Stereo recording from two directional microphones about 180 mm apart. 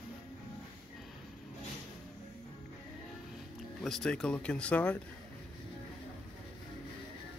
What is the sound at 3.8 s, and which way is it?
Speech, 5° left (ahead or behind).